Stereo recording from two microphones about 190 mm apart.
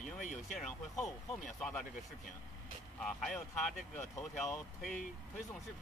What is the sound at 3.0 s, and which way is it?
Speech, 5° left (ahead or behind).